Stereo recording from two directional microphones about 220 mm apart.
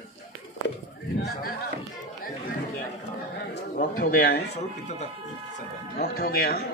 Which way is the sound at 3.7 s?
40° left (ahead or behind).